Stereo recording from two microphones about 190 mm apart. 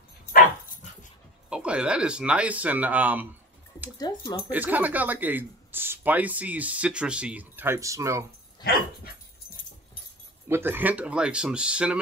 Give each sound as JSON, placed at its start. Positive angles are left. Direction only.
{"t": 1.5, "sound": "speech", "side_deg": -5}
{"t": 4.1, "sound": "speech", "side_deg": 20}
{"t": 4.5, "sound": "speech", "side_deg": -10}
{"t": 10.5, "sound": "speech", "side_deg": -10}